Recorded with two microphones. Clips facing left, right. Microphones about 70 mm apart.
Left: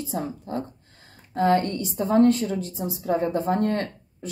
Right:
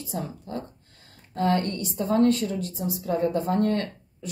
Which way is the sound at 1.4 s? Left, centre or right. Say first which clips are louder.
Left 3 dB; left.